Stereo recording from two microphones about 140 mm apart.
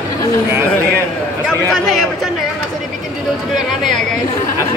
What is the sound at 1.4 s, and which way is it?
Speech, centre (ahead or behind).